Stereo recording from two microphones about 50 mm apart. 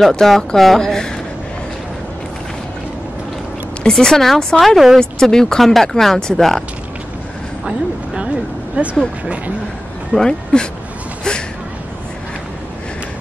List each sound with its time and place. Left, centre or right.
0.1 s speech: centre
0.7 s a sound: centre
3.9 s speech: centre
7.6 s speech: centre
8.8 s speech: right
10.1 s speech: centre